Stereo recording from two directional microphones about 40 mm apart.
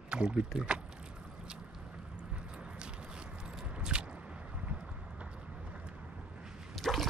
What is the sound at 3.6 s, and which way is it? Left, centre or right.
Squish, right.